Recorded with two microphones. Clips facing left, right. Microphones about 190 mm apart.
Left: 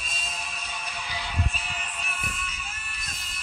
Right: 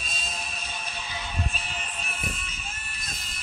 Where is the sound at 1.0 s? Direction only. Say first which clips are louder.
Left 1 dB; 25° right (ahead or behind).